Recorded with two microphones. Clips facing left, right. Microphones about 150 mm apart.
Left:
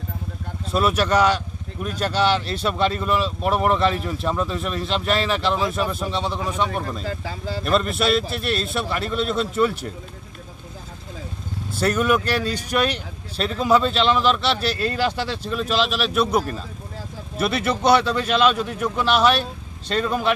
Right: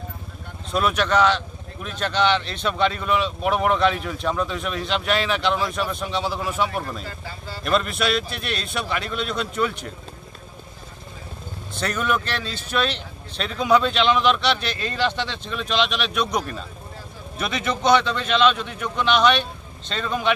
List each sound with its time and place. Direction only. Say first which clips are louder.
0.7 s speech: left 2 dB; 5° left (ahead or behind)
7.1 s speech: left 7 dB; 90° left
7.9 s speech: left 3 dB; centre (ahead or behind)
11.7 s speech: left 5 dB; 10° left (ahead or behind)